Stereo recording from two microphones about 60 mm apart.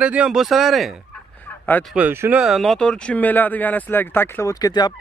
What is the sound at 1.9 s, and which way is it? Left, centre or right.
Speech, centre.